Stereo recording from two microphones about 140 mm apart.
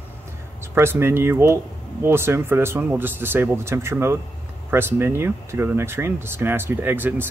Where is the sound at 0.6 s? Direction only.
15° right (ahead or behind).